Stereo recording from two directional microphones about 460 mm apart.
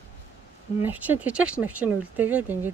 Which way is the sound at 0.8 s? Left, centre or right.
Centre.